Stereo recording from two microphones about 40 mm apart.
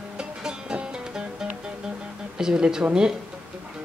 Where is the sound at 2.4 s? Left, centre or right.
Centre.